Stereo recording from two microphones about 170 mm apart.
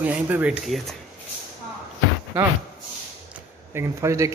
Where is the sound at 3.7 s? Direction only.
15° right (ahead or behind).